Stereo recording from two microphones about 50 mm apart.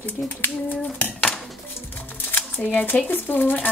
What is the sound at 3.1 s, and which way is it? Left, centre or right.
Speech, left.